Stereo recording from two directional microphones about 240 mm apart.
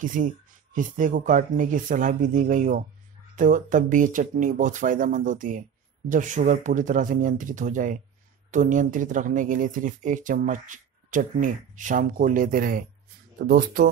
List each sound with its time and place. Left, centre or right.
0.0 s speech: right